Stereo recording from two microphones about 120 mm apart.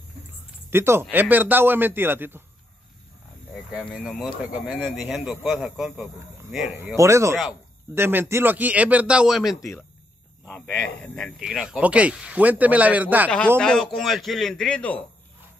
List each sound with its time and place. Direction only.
0.7 s speech: 20° right (ahead or behind)
3.8 s speech: centre (ahead or behind)
7.0 s speech: 25° right (ahead or behind); by 9.6 s 5° right (ahead or behind)
10.4 s speech: 10° left (ahead or behind)
11.4 s speech: 5° right (ahead or behind)
13.6 s speech: 5° left (ahead or behind)